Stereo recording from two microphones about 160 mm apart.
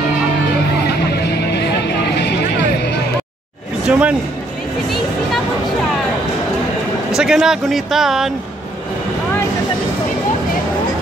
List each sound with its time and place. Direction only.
0.8 s vehicle: 90° left
3.8 s a sound: 5° right (ahead or behind)
7.2 s speech: 5° right (ahead or behind)